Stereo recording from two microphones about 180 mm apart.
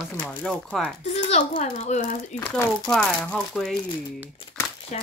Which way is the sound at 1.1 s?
40° left (ahead or behind).